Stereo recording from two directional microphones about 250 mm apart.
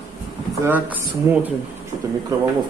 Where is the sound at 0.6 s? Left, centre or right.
Centre.